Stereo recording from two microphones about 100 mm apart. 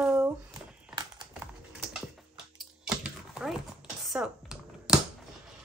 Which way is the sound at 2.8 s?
5° right (ahead or behind).